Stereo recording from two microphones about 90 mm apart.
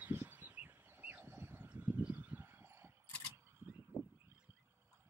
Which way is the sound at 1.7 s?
20° right (ahead or behind).